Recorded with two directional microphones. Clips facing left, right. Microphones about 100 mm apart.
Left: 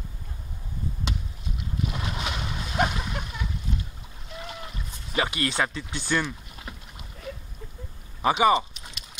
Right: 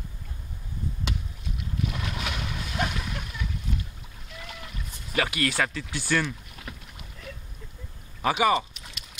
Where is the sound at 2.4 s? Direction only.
30° left (ahead or behind).